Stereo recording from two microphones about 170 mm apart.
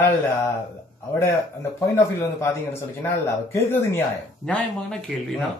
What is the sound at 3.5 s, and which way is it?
A man's voice, 15° left (ahead or behind).